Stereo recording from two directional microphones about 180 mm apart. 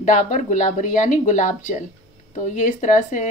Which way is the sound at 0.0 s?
45° left (ahead or behind).